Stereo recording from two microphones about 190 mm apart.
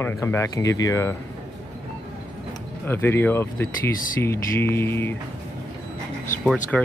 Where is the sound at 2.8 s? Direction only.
10° left (ahead or behind).